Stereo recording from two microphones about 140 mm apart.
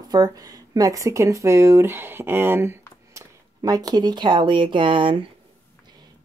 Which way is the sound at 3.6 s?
25° right (ahead or behind).